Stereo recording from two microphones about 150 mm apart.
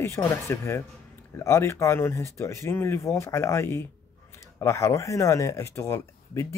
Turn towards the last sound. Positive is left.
turn(degrees=20)  # may be behind; listen again after turning